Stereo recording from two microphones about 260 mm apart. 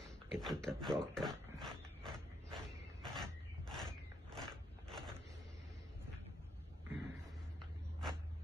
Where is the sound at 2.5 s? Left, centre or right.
Centre.